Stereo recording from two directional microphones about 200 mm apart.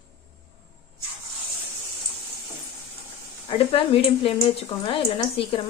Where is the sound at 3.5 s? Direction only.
30° left (ahead or behind).